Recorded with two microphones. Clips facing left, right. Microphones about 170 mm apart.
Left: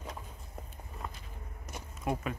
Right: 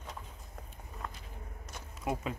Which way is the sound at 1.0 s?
5° left (ahead or behind).